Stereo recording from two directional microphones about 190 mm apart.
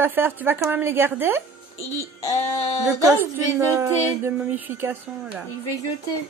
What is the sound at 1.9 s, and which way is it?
Speech, 15° left (ahead or behind).